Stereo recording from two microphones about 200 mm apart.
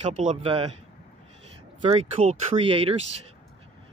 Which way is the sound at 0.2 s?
35° right (ahead or behind).